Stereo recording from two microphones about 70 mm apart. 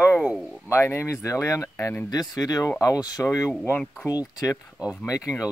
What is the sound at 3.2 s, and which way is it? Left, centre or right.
Speech, left.